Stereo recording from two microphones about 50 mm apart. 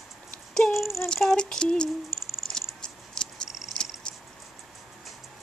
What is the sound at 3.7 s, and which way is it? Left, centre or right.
Purr, centre.